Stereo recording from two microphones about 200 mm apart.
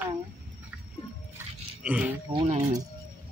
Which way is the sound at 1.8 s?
5° right (ahead or behind).